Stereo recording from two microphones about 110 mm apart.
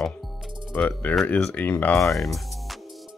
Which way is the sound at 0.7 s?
15° left (ahead or behind).